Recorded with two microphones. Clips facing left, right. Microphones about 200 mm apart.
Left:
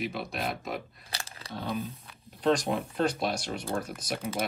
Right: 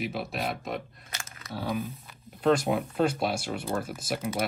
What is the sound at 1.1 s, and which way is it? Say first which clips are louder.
Crumpling: left 1 dB; 30° left (ahead or behind).